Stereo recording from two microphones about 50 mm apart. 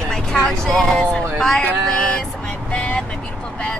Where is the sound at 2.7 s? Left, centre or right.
Left.